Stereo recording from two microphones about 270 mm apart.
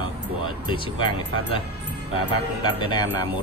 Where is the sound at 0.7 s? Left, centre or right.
Centre.